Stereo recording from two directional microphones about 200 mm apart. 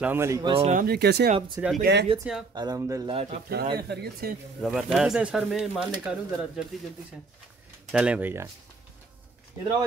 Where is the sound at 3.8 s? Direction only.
55° right (ahead or behind).